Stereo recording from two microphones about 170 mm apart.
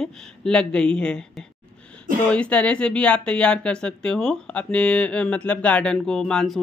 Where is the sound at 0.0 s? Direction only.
5° left (ahead or behind).